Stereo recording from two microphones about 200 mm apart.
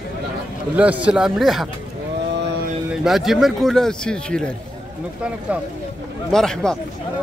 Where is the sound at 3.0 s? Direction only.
Centre (ahead or behind).